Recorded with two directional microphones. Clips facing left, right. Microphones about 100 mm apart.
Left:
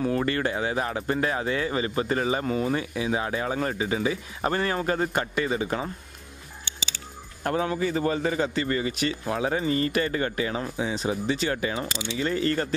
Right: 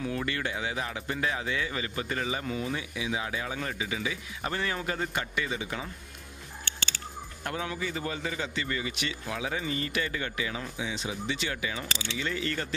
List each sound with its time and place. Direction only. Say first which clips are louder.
0.0 s speech: left 7 dB; 40° left (ahead or behind)
7.4 s speech: left 8 dB; 40° left (ahead or behind)